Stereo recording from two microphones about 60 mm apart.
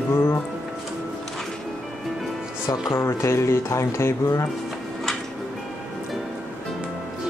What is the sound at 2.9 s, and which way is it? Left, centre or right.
Speech, left.